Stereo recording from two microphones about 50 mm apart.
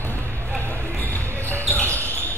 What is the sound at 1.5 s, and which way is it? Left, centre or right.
Basketball bounce, left.